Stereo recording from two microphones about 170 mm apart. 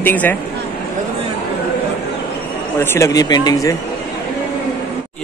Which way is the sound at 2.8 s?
15° left (ahead or behind).